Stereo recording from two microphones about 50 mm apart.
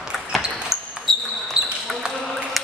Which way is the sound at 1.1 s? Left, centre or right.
Centre.